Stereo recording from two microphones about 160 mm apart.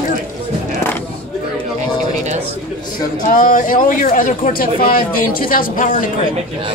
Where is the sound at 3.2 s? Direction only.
60° left (ahead or behind).